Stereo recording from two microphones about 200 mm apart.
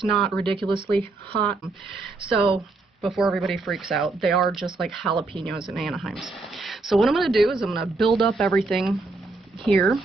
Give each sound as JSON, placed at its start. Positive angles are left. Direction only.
{"t": 0.0, "sound": "speech", "side_deg": 0}
{"t": 2.2, "sound": "speech", "side_deg": -5}